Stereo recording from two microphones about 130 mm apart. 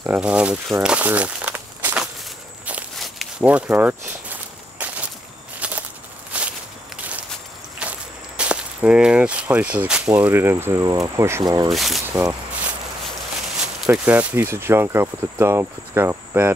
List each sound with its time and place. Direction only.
0.0 s speech: 10° right (ahead or behind)
0.8 s crumpling: 10° right (ahead or behind)
3.0 s a sound: centre (ahead or behind)
3.4 s walk: 10° right (ahead or behind)
7.8 s vehicle: 10° right (ahead or behind)
8.4 s speech: 10° right (ahead or behind); by 11.7 s 25° right (ahead or behind)
11.7 s speech: centre (ahead or behind)
13.8 s speech: 15° right (ahead or behind)